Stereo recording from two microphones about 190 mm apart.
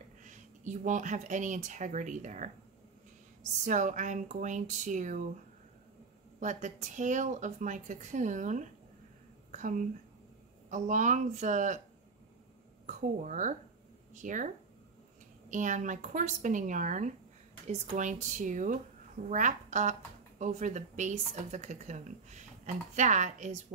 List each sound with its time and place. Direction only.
0.2 s speech: 40° right (ahead or behind)
3.6 s speech: 40° right (ahead or behind)
6.4 s speech: 40° right (ahead or behind)
12.8 s speech: 40° right (ahead or behind)
15.5 s speech: 40° right (ahead or behind)